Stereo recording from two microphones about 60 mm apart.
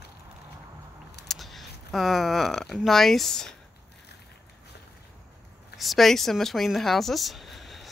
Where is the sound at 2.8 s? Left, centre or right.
Centre.